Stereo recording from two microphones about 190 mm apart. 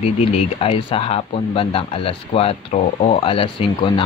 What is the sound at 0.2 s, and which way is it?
Speech, 30° left (ahead or behind).